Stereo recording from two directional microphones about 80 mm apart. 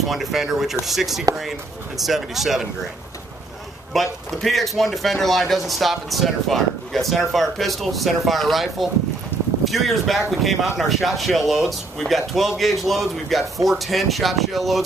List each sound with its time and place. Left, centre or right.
0.0 s speech: centre
3.9 s speech: centre